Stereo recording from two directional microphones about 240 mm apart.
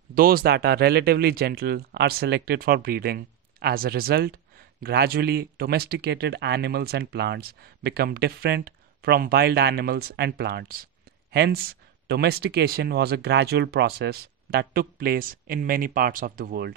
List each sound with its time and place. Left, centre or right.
0.1 s speech: right